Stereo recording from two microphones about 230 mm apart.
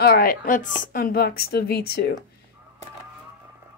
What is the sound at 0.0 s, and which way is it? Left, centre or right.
A woman's voice, left.